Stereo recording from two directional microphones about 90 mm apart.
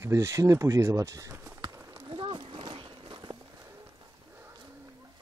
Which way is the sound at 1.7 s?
30° right (ahead or behind).